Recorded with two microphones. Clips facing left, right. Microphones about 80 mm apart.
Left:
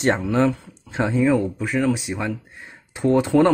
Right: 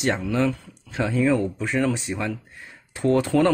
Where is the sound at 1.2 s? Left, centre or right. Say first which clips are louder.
Left 1 dB; centre.